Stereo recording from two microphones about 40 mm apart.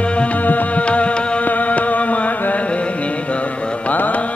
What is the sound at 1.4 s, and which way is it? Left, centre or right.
Music, left.